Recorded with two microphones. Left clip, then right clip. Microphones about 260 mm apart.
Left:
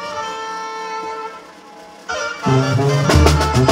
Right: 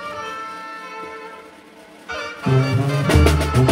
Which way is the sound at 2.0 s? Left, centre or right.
Left.